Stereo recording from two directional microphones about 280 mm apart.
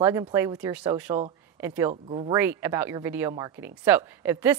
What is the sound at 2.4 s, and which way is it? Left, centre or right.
A woman's voice, centre.